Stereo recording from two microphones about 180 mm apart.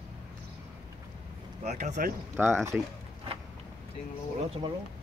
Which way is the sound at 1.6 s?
40° right (ahead or behind).